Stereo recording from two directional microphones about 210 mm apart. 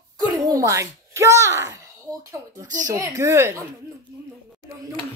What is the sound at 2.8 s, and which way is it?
Speech, 15° right (ahead or behind).